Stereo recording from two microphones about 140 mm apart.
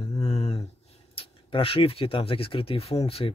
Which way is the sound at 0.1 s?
50° left (ahead or behind).